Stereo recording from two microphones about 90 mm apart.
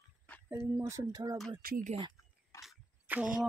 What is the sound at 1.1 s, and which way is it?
Speech, 50° right (ahead or behind).